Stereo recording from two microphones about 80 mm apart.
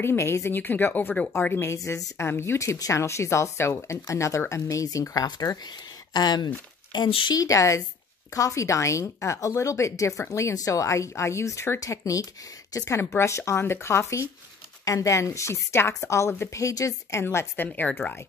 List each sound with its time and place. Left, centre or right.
0.0 s a woman's voice: left
1.8 s speech: left
2.2 s speech: left
7.3 s speech: left
17.6 s speech: centre
17.9 s a woman's voice: left